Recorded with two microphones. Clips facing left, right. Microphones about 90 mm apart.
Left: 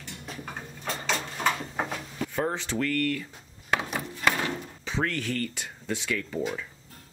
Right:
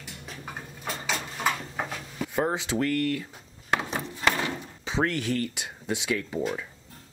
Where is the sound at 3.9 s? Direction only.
25° right (ahead or behind).